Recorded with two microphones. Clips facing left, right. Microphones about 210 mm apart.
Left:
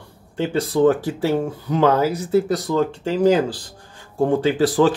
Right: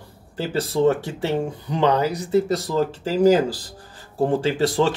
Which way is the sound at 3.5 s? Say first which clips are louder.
Even; 5° right (ahead or behind).